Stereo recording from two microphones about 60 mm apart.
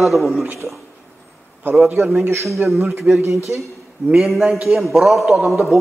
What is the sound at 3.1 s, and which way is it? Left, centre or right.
Speech, right.